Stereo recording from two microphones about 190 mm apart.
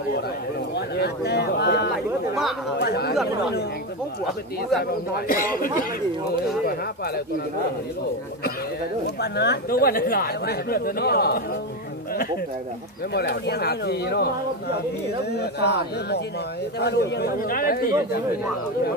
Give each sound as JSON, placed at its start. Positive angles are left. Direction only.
{"t": 0.7, "sound": "speech", "side_deg": 60}
{"t": 5.1, "sound": "speech", "side_deg": 50}
{"t": 9.0, "sound": "speech", "side_deg": 60}
{"t": 13.1, "sound": "speech", "side_deg": 60}
{"t": 15.3, "sound": "speech", "side_deg": 60}